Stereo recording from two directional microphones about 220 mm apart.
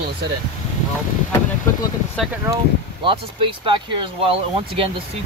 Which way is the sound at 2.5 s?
15° right (ahead or behind).